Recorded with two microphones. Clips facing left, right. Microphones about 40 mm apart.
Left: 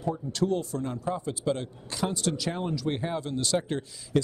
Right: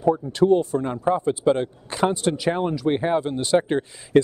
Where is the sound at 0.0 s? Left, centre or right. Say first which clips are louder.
Right 9 dB; right.